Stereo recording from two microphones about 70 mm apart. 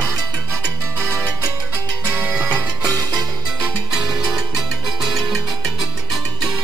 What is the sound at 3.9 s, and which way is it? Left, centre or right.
Music, centre.